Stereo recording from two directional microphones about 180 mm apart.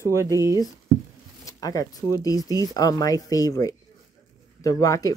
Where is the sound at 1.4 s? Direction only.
20° left (ahead or behind).